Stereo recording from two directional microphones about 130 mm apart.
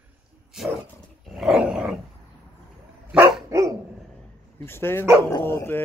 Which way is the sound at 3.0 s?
15° right (ahead or behind).